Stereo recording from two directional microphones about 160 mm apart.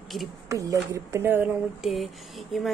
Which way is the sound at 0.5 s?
20° right (ahead or behind).